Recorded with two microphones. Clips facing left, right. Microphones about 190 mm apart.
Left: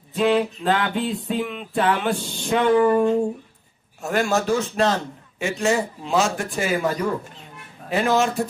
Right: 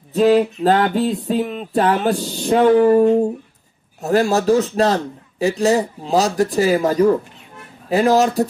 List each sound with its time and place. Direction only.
0.1 s a man's voice: 40° right (ahead or behind)